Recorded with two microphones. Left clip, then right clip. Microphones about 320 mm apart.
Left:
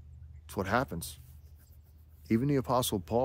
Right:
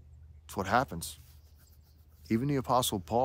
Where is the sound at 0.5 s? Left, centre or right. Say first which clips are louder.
Right 2 dB; centre.